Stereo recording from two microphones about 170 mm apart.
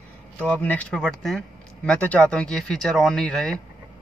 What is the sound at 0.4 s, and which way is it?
Speech, 10° left (ahead or behind).